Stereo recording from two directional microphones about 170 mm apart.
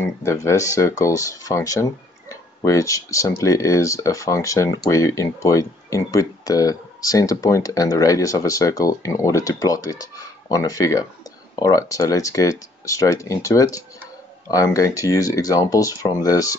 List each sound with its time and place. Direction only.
0.0 s speech: 15° left (ahead or behind)